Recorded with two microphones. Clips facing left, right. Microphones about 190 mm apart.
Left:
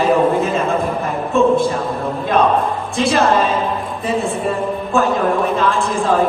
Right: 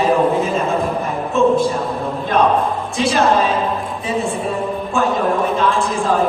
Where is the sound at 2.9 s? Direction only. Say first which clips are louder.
Left 1 dB; centre (ahead or behind).